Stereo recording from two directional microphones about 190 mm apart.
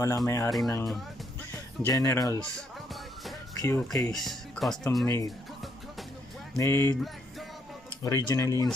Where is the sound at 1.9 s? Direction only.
15° left (ahead or behind).